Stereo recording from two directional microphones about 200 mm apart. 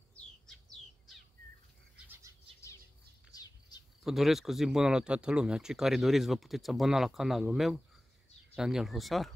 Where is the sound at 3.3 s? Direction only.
20° left (ahead or behind).